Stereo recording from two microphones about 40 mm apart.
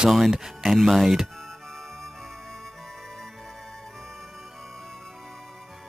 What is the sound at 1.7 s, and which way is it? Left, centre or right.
Music, centre.